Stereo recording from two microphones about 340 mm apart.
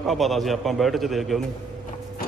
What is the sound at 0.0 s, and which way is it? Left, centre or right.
A man's voice, centre.